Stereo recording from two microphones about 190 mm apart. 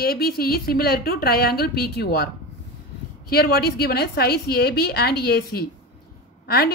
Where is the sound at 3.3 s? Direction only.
55° left (ahead or behind).